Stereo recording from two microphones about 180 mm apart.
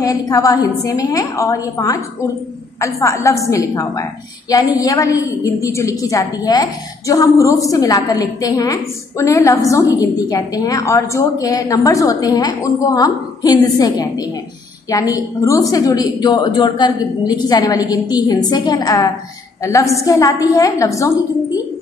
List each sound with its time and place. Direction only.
0.0 s a woman's voice: 20° left (ahead or behind)